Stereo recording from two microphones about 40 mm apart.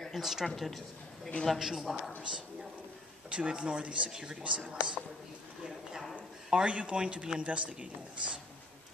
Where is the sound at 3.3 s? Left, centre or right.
Right.